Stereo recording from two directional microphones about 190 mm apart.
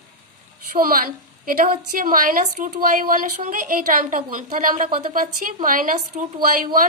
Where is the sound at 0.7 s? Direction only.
50° right (ahead or behind).